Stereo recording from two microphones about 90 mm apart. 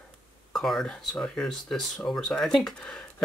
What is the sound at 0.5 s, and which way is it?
Speech, 5° left (ahead or behind).